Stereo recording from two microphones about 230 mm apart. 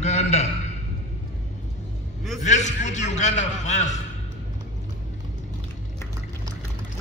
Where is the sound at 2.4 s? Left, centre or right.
Left.